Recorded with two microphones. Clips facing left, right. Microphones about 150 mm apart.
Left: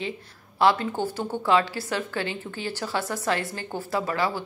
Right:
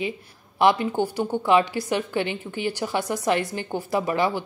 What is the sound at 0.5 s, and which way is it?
A woman's voice, 15° right (ahead or behind).